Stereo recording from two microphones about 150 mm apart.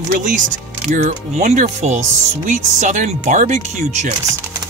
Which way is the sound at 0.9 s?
60° right (ahead or behind).